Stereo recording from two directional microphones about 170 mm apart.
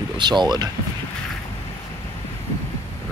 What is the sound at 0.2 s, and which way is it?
Speech, 25° right (ahead or behind).